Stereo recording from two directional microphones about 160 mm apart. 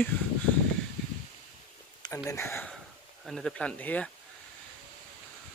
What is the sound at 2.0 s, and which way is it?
Speech, 20° left (ahead or behind).